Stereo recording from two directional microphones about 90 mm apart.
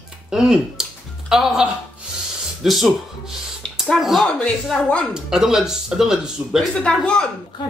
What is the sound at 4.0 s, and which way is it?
Speech, centre (ahead or behind).